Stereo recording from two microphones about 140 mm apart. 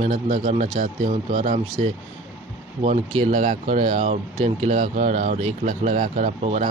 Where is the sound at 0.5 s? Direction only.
60° right (ahead or behind).